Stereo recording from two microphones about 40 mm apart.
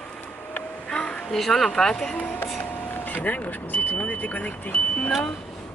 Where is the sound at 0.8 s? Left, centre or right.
Left.